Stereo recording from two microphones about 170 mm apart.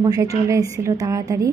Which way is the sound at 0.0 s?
20° right (ahead or behind).